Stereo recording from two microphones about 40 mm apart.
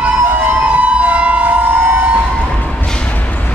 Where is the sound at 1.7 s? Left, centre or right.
Right.